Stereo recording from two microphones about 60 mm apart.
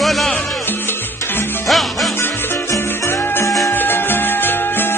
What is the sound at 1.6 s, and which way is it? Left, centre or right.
Music, centre.